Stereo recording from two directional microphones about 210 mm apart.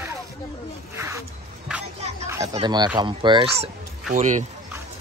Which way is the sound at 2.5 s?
20° right (ahead or behind).